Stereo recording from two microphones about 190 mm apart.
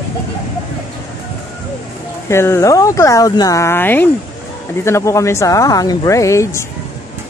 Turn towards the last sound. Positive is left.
turn(degrees=15)  # may be behind; listen again after turning